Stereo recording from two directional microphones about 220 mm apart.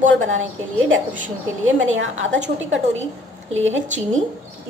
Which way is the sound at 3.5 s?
60° right (ahead or behind).